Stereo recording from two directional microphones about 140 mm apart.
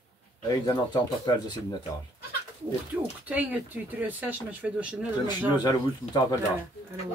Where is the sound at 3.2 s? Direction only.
10° right (ahead or behind).